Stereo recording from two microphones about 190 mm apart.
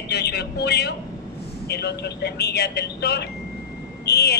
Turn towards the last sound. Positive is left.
turn(degrees=60)  # may be behind; listen again after turning